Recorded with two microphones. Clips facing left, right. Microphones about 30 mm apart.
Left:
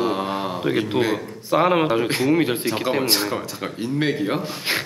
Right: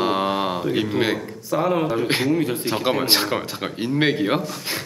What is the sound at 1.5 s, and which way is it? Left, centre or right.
A man's voice, left.